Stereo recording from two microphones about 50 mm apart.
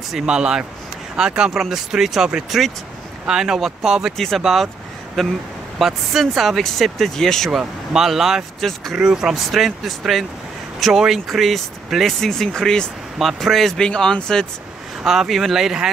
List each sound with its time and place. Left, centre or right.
0.2 s speech: centre
5.2 s speech: centre
7.5 s speech: centre
8.5 s speech: centre
8.9 s speech: centre
11.2 s speech: centre
13.2 s speech: centre
13.7 s speech: centre
15.0 s speech: centre